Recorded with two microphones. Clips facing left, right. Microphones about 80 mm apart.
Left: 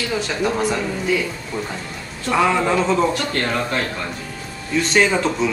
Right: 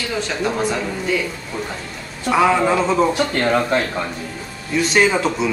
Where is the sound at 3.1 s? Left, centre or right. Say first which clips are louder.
Right 4 dB; centre.